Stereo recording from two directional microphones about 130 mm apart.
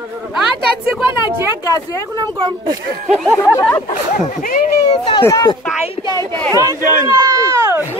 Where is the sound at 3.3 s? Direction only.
20° left (ahead or behind).